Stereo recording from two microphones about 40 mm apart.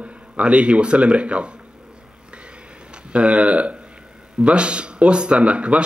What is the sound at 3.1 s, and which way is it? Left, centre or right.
A man's voice, right.